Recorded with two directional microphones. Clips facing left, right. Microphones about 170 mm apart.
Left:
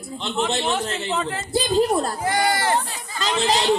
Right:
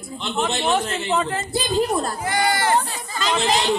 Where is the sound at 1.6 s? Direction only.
35° left (ahead or behind).